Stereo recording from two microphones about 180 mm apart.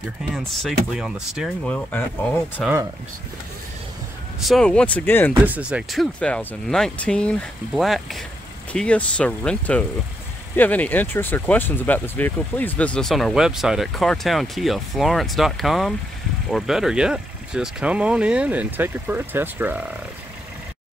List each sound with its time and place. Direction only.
0.3 s speech: centre (ahead or behind)
1.7 s speech: 10° left (ahead or behind)
4.5 s speech: 5° left (ahead or behind)
5.3 s speech: 10° right (ahead or behind)